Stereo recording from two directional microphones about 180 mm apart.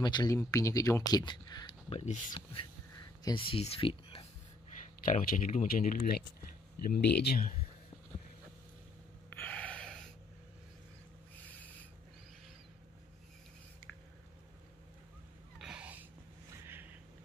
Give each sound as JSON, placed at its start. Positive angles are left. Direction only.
{"t": 0.0, "sound": "speech", "side_deg": 20}
{"t": 2.0, "sound": "speech", "side_deg": 45}
{"t": 3.3, "sound": "speech", "side_deg": 30}
{"t": 5.0, "sound": "speech", "side_deg": 50}
{"t": 9.3, "sound": "gasp", "side_deg": 10}
{"t": 15.6, "sound": "a sound", "side_deg": -5}